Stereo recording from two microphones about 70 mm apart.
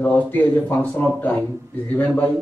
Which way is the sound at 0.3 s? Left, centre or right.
Left.